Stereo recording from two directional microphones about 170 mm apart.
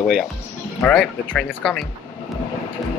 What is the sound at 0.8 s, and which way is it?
Speech, 5° left (ahead or behind).